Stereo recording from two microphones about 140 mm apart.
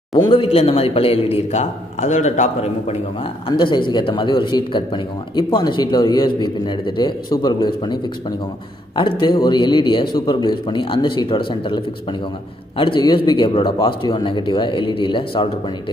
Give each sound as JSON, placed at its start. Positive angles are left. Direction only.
{"t": 0.1, "sound": "a man's voice", "side_deg": 35}
{"t": 3.4, "sound": "speech", "side_deg": 35}